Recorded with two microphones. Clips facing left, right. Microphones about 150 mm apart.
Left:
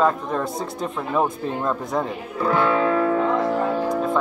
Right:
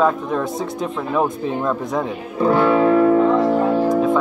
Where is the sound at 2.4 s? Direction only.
30° right (ahead or behind).